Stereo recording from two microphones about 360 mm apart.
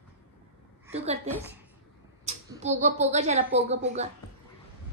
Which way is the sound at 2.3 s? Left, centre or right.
Centre.